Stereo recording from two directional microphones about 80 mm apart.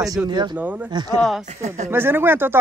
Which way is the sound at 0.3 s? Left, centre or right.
Right.